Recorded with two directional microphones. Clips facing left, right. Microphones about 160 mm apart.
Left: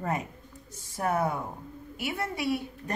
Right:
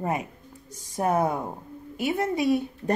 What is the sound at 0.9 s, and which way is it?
A woman's voice, 20° right (ahead or behind).